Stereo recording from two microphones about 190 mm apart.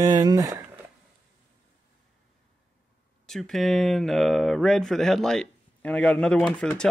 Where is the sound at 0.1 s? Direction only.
20° right (ahead or behind).